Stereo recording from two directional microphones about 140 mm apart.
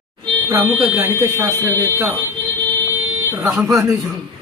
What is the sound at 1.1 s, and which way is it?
Speech, 20° right (ahead or behind).